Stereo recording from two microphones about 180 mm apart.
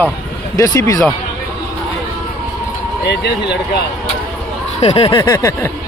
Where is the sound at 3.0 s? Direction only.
65° left (ahead or behind).